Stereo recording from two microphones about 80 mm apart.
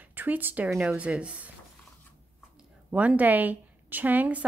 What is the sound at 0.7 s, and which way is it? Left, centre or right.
Speech, centre.